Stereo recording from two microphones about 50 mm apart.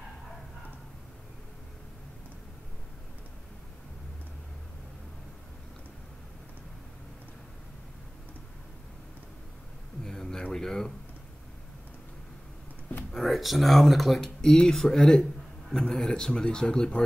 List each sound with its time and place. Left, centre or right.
10.0 s a sound: centre
10.5 s speech: centre
13.1 s a man's voice: centre